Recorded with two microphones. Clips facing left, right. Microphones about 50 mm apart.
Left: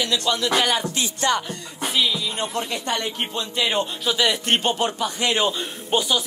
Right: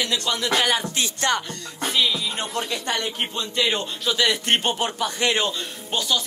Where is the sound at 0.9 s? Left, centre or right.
Right.